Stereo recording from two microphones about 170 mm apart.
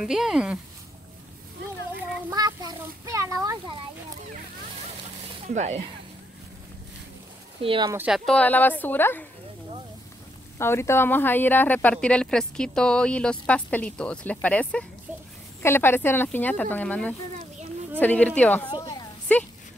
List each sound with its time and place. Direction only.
0.0 s speech: 5° right (ahead or behind)
2.3 s a sound: 20° right (ahead or behind)
5.5 s speech: 40° right (ahead or behind)
7.6 s speech: 30° right (ahead or behind)
8.1 s speech: 5° left (ahead or behind)
10.6 s speech: 15° left (ahead or behind)
18.7 s a sound: 25° left (ahead or behind)
19.3 s speech: 10° left (ahead or behind)